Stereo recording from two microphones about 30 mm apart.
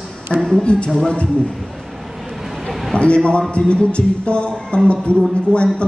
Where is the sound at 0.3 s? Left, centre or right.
Left.